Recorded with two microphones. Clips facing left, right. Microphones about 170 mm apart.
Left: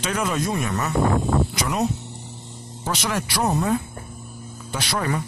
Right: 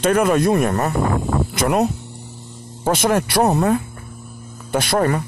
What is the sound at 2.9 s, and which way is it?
Speech, 50° right (ahead or behind).